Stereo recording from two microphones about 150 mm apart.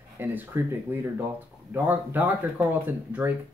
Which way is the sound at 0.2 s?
15° right (ahead or behind).